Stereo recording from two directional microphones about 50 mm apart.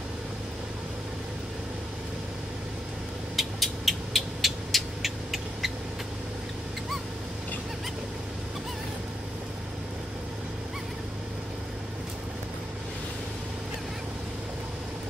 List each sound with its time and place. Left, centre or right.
3.3 s vehicle: centre